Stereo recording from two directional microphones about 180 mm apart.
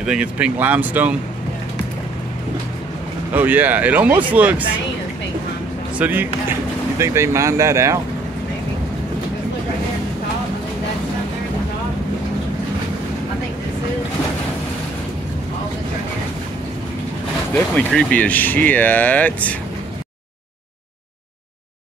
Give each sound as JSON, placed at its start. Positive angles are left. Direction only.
{"t": 0.0, "sound": "speech", "side_deg": -5}
{"t": 3.3, "sound": "speech", "side_deg": -10}
{"t": 5.9, "sound": "speech", "side_deg": -10}
{"t": 17.7, "sound": "speech", "side_deg": 10}